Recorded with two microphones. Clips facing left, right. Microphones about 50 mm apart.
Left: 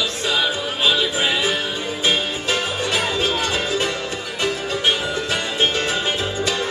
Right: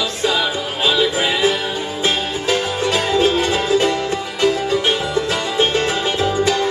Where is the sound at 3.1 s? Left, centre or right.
Right.